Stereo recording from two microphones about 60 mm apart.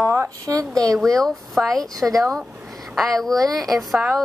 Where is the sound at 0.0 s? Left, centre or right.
Right.